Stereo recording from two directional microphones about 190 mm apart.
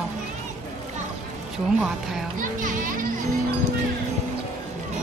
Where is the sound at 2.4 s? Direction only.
45° right (ahead or behind).